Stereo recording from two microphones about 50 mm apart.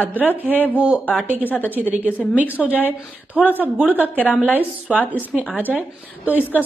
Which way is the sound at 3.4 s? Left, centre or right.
Centre.